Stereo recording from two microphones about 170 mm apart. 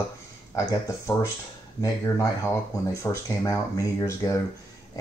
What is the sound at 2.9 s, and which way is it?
Speech, 20° left (ahead or behind).